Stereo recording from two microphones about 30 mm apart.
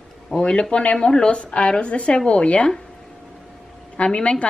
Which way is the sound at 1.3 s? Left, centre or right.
Left.